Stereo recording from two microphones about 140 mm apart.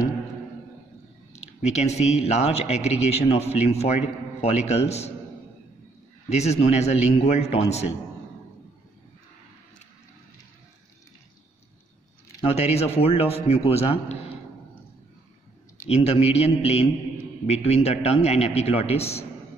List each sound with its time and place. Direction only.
1.3 s a man's voice: 50° left (ahead or behind)
6.2 s a man's voice: 50° left (ahead or behind)
12.5 s a man's voice: 50° left (ahead or behind)
15.9 s a man's voice: 45° left (ahead or behind)